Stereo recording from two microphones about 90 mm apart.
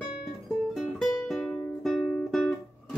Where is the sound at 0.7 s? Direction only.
5° left (ahead or behind).